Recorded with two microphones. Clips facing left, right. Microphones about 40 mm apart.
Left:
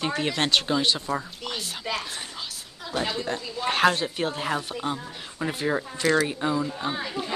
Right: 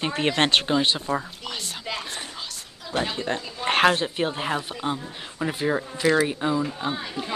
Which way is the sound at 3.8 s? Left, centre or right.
Centre.